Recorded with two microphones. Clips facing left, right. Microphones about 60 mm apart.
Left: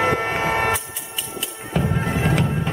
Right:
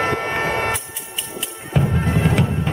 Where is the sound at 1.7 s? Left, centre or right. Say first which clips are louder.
Right 2 dB; centre.